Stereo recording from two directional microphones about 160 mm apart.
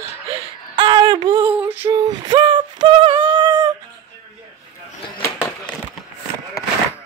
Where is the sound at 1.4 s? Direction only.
10° right (ahead or behind).